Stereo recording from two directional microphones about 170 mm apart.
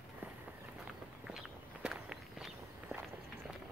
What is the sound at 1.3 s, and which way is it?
Walk, 5° right (ahead or behind).